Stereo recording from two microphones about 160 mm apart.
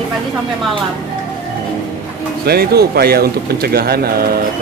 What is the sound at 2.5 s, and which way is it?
Speech, 75° right (ahead or behind).